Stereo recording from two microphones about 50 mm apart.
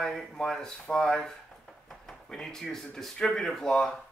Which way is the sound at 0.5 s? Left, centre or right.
Centre.